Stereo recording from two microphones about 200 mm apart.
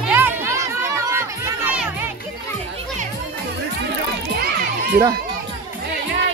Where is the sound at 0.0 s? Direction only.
10° right (ahead or behind).